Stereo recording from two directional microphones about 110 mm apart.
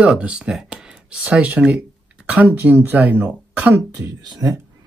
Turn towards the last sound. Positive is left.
turn(degrees=-35)  # may be behind; listen again after turning